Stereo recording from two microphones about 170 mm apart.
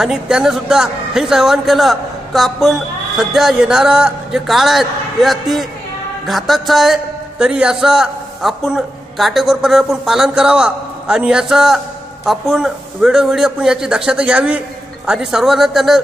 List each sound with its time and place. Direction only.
0.0 s a man's voice: 5° right (ahead or behind)